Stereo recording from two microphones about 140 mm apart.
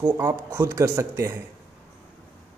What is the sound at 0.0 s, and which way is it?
A man's voice, 15° right (ahead or behind).